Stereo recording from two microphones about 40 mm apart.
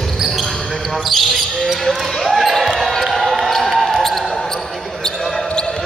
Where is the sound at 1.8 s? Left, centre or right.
Centre.